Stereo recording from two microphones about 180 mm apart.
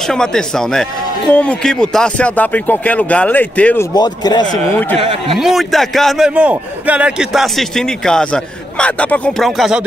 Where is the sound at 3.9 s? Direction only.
20° left (ahead or behind).